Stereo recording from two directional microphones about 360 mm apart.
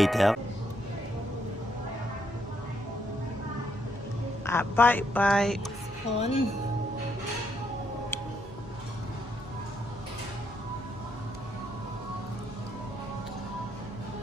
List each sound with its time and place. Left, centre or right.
0.0 s speech: centre
4.5 s speech: centre
6.1 s speech: centre